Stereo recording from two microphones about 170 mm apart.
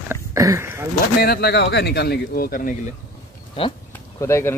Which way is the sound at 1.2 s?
70° left (ahead or behind).